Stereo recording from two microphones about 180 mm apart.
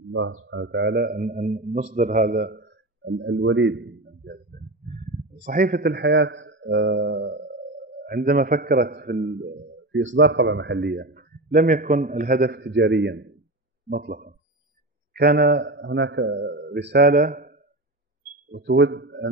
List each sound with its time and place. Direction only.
0.2 s a man's voice: 90° right; by 7.5 s 65° right (ahead or behind)
8.0 s a man's voice: 55° right (ahead or behind); by 13.3 s 75° right (ahead or behind)
13.8 s a man's voice: 55° right (ahead or behind)
18.5 s a man's voice: 80° right